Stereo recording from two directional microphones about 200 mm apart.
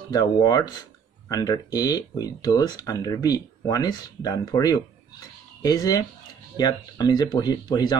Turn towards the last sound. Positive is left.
turn(degrees=20)  # may be behind; listen again after turning